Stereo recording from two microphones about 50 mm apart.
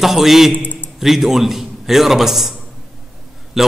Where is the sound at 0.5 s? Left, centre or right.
Left.